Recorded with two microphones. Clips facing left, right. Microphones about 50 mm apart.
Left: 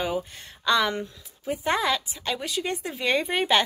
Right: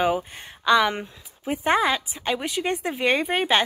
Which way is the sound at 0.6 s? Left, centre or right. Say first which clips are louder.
Right 4 dB; centre.